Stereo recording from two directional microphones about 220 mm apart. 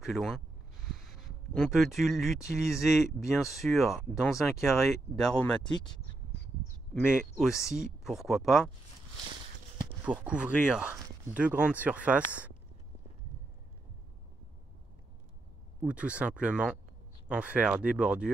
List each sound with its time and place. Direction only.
0.0 s speech: centre (ahead or behind)
1.5 s speech: centre (ahead or behind)
6.9 s speech: centre (ahead or behind)
10.0 s speech: 5° right (ahead or behind)
15.8 s speech: 5° right (ahead or behind)